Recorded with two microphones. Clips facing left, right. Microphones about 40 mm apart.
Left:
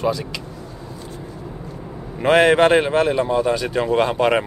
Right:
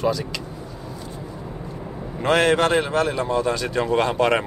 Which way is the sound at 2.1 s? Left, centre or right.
Centre.